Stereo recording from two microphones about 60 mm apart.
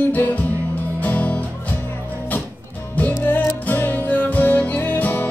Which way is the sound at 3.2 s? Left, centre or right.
Left.